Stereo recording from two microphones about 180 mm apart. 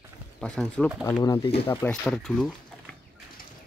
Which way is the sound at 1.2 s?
20° left (ahead or behind).